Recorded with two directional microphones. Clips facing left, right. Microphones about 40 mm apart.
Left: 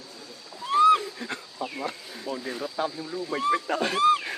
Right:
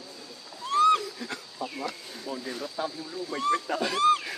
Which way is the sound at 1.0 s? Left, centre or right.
Left.